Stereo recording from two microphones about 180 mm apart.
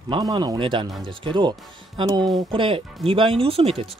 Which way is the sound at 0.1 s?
25° right (ahead or behind).